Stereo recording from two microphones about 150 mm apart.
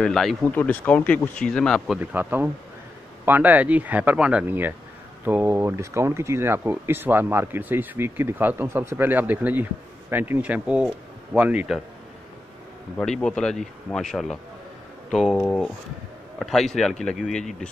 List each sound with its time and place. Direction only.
0.0 s speech: centre (ahead or behind)
2.0 s speech: 10° right (ahead or behind)
12.9 s speech: 5° left (ahead or behind)